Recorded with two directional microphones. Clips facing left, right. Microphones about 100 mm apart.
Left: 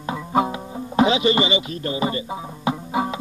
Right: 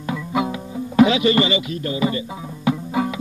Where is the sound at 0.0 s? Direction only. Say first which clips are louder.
Left 1 dB; 35° left (ahead or behind).